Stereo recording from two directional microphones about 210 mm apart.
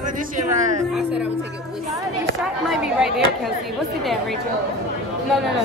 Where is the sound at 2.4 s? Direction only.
Centre (ahead or behind).